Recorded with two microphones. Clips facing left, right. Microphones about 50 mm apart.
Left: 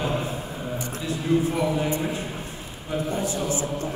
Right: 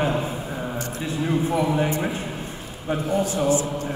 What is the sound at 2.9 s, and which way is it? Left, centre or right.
A man's voice, right.